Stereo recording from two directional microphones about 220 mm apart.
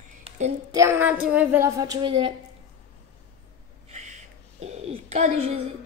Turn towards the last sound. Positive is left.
turn(degrees=-30)  # may be behind; listen again after turning